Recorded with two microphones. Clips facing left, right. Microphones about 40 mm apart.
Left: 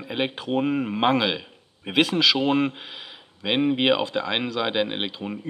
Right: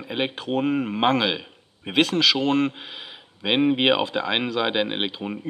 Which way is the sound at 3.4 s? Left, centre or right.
Centre.